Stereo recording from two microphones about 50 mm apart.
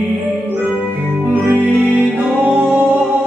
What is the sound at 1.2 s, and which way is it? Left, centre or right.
Music, right.